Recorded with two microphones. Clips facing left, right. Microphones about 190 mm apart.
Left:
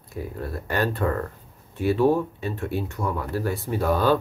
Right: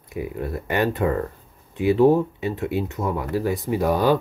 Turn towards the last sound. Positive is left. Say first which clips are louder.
# right 2 dB
turn(degrees=-15)  # may be behind; listen again after turning